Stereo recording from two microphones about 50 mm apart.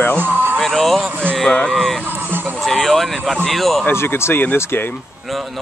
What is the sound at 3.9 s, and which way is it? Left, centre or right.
Speech, left.